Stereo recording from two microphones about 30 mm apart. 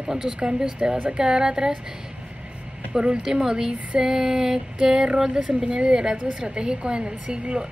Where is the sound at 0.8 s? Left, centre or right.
Right.